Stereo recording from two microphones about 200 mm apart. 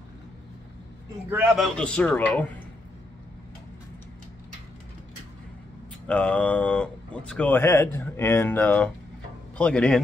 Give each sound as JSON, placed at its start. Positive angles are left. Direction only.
{"t": 1.3, "sound": "a man's voice", "side_deg": -5}
{"t": 6.0, "sound": "a man's voice", "side_deg": 5}